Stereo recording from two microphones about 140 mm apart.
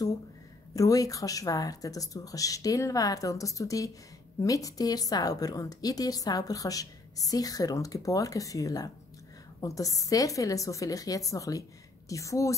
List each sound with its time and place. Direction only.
0.7 s a woman's voice: 25° left (ahead or behind)